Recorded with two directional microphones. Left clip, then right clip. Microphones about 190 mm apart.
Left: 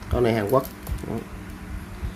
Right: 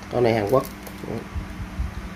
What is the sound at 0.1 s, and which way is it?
Speech, 15° left (ahead or behind).